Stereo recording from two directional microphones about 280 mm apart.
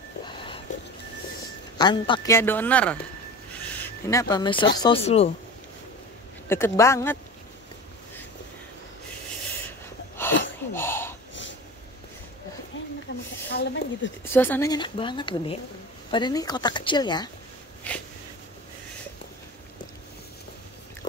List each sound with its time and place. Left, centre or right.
1.8 s speech: centre
3.5 s a sound: centre
4.7 s speech: centre
6.5 s speech: centre
10.2 s a sound: centre
12.7 s snake: left
13.5 s speech: left
14.2 s speech: centre
17.9 s a sound: centre